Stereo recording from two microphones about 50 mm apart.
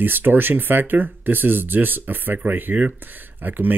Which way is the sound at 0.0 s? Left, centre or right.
Right.